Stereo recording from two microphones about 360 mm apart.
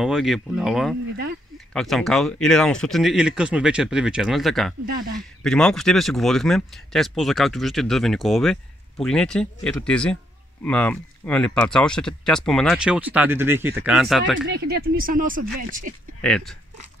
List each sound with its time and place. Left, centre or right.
0.0 s speech: centre
14.3 s speech: right
16.2 s speech: centre